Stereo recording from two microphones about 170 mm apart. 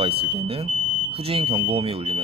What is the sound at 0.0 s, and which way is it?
Speech, 35° right (ahead or behind).